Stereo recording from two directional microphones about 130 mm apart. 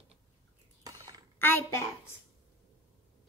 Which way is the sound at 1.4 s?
15° left (ahead or behind).